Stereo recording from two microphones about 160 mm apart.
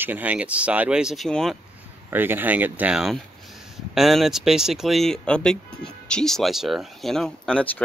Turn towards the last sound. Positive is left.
turn(degrees=5)  # may be behind; listen again after turning